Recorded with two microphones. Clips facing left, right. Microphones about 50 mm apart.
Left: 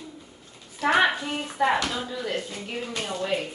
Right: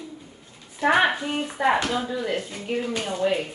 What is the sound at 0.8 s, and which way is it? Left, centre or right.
Speech, centre.